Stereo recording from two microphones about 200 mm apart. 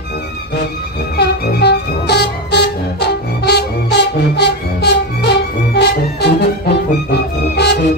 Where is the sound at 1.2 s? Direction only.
55° left (ahead or behind).